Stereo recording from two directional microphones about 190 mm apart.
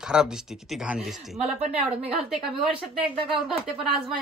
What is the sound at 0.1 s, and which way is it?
Speech, 5° right (ahead or behind).